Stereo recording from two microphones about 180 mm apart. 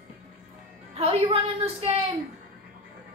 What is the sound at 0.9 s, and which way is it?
A woman's voice, 35° right (ahead or behind).